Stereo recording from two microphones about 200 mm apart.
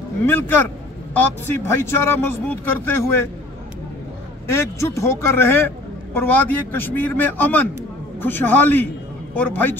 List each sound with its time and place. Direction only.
0.3 s speech: 10° left (ahead or behind)
4.5 s speech: 15° left (ahead or behind)